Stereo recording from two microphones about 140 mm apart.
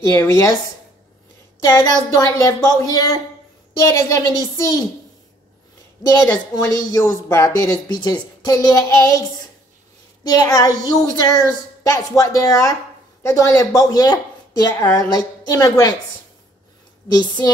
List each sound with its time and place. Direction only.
0.0 s speech: 20° left (ahead or behind)
1.6 s speech: 25° left (ahead or behind)
6.2 s speech: 25° left (ahead or behind)